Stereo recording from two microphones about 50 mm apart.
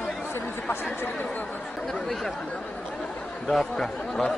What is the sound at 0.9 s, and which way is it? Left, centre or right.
Speech, left.